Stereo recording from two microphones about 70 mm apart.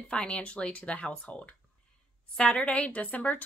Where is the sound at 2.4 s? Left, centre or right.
Centre.